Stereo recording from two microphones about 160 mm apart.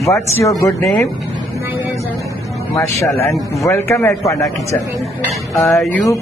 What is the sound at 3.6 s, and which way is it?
Speech, 15° left (ahead or behind).